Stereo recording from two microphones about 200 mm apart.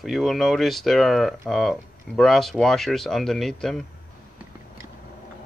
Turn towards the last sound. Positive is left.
turn(degrees=0)  # may be behind; listen again after turning